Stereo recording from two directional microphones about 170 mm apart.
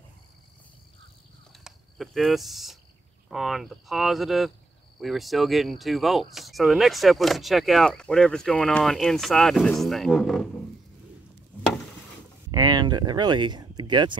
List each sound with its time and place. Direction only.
1.6 s speech: centre (ahead or behind)
12.4 s speech: 20° right (ahead or behind)